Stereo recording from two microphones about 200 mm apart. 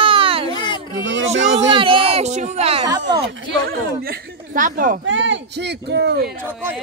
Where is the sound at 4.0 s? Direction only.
45° right (ahead or behind).